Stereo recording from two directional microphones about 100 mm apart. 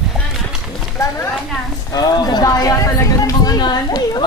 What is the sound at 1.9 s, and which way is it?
Speech, 40° left (ahead or behind).